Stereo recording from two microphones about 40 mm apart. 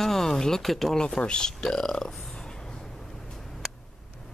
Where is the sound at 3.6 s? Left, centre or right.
Centre.